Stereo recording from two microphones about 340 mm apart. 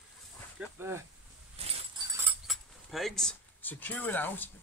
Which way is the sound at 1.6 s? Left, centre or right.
Centre.